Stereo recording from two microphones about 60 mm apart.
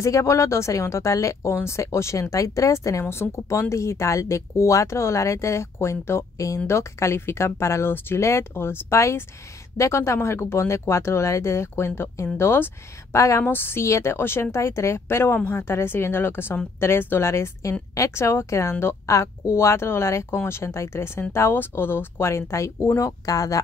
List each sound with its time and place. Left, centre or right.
0.0 s speech: left
1.5 s speech: left
6.3 s speech: left
6.7 s a woman's voice: left
13.1 s speech: left
13.4 s a woman's voice: left
13.8 s a woman's voice: left
17.3 s speech: left
22.3 s speech: left
22.9 s speech: left